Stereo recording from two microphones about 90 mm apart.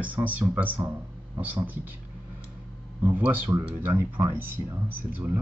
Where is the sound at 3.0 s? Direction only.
20° right (ahead or behind).